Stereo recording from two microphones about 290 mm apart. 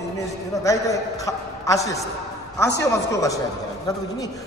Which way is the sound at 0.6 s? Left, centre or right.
Centre.